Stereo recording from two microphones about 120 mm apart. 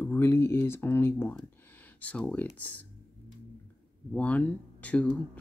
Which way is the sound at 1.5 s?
15° left (ahead or behind).